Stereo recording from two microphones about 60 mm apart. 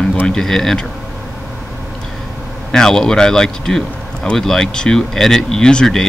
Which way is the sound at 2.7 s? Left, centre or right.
Centre.